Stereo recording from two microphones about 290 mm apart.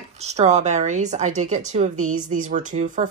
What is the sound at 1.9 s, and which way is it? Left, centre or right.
Speech, right.